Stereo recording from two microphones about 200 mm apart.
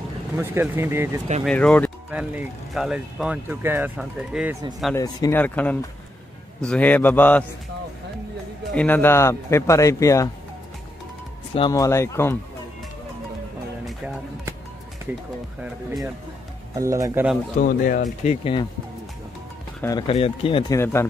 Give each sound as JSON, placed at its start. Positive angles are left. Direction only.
{"t": 0.4, "sound": "speech", "side_deg": -10}
{"t": 1.4, "sound": "speech", "side_deg": 5}
{"t": 2.0, "sound": "speech", "side_deg": -5}
{"t": 4.9, "sound": "speech", "side_deg": 15}
{"t": 8.7, "sound": "speech", "side_deg": 10}
{"t": 11.5, "sound": "speech", "side_deg": 20}
{"t": 16.7, "sound": "speech", "side_deg": -15}
{"t": 17.6, "sound": "speech", "side_deg": 40}
{"t": 18.2, "sound": "speech", "side_deg": 30}
{"t": 19.8, "sound": "speech", "side_deg": 15}
{"t": 20.1, "sound": "speech", "side_deg": 30}